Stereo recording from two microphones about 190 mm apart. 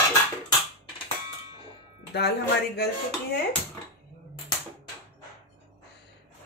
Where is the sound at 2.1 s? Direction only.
60° left (ahead or behind).